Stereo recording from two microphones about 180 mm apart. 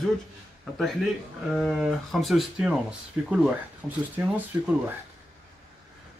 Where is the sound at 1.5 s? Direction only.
Centre (ahead or behind).